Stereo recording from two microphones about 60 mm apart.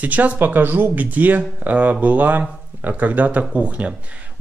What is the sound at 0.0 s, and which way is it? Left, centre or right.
Speech, right.